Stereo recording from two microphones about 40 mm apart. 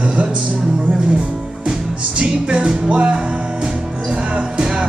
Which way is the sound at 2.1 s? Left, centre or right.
Right.